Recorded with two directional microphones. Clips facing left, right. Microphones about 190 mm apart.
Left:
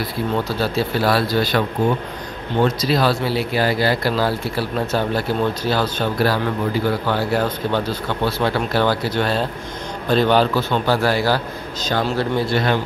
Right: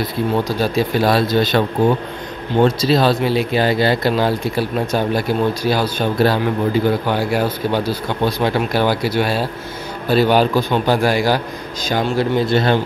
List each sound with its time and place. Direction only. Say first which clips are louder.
0.0 s speech: right 3 dB; 15° right (ahead or behind)
2.6 s speech: right 3 dB; 25° right (ahead or behind); by 6.0 s 10° right (ahead or behind)
6.1 s speech: right 4 dB; 25° right (ahead or behind)